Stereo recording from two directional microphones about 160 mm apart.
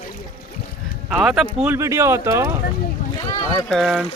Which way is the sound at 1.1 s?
5° right (ahead or behind).